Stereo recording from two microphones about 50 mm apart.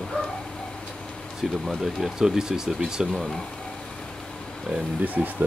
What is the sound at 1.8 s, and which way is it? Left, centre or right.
Speech, centre.